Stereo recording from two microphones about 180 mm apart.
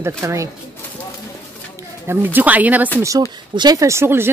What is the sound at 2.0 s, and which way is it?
Speech, 10° right (ahead or behind).